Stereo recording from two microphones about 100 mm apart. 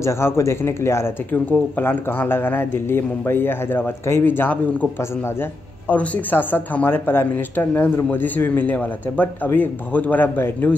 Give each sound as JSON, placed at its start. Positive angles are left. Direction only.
{"t": 0.0, "sound": "speech", "side_deg": 25}